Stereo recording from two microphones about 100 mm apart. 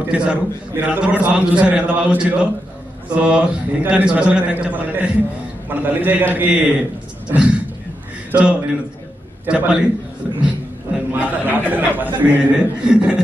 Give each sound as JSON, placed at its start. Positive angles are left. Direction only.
{"t": 0.1, "sound": "a man's voice", "side_deg": -10}
{"t": 7.2, "sound": "a sound", "side_deg": -15}
{"t": 8.3, "sound": "a man's voice", "side_deg": -10}
{"t": 11.1, "sound": "a man's voice", "side_deg": -20}